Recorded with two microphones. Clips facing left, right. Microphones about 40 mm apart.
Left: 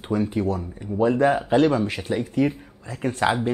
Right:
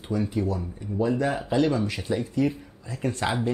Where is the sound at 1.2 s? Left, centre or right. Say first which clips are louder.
Left 8 dB; left.